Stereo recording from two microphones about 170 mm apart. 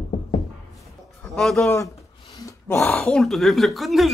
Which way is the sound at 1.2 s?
5° left (ahead or behind).